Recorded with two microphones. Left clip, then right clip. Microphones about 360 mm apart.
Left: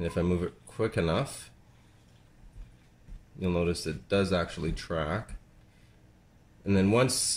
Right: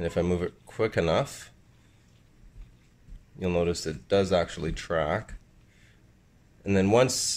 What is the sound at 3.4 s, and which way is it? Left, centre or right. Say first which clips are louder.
Speech: right 3 dB; centre.